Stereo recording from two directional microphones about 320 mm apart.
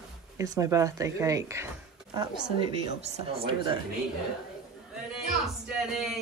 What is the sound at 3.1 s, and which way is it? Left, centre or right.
Speech, centre.